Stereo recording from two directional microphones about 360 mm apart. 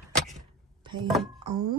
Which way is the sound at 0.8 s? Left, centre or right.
Centre.